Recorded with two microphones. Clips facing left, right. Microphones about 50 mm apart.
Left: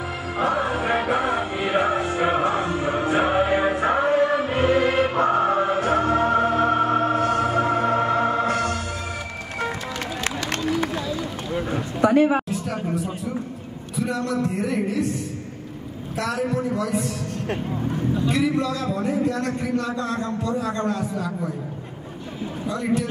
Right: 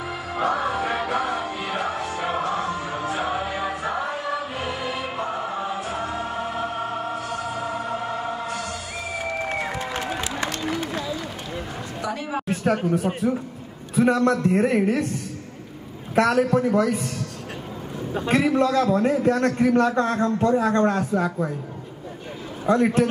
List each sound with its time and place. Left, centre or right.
0.4 s music: centre; by 8.7 s left
11.7 s a sound: left
12.4 s a sound: right
13.9 s a man's voice: right
16.2 s a man's voice: right
18.1 s a man's voice: right
22.7 s a man's voice: right